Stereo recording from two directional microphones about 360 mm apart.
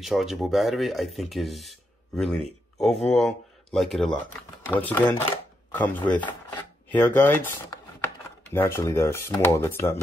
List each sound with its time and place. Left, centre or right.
0.0 s speech: centre